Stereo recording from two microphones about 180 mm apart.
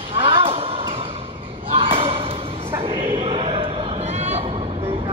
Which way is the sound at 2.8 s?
30° right (ahead or behind).